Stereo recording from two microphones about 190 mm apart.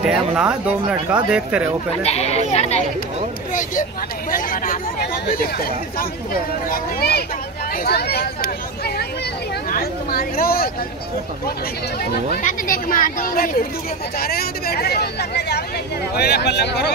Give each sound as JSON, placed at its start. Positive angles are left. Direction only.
{"t": 0.0, "sound": "speech", "side_deg": -5}
{"t": 2.0, "sound": "speech", "side_deg": 35}
{"t": 4.3, "sound": "speech", "side_deg": 45}
{"t": 6.7, "sound": "speech", "side_deg": 55}
{"t": 12.4, "sound": "speech", "side_deg": 45}